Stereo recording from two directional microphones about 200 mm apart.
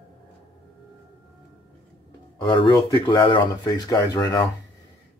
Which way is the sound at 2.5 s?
25° left (ahead or behind).